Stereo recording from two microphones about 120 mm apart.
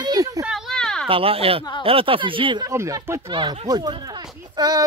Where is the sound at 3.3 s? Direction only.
40° right (ahead or behind).